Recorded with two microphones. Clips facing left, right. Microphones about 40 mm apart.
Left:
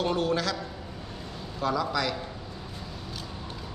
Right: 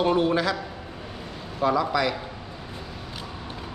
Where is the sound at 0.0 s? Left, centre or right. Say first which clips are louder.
Right 5 dB; right.